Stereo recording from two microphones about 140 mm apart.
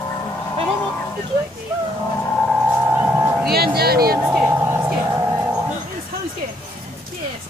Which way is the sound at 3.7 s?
90° right.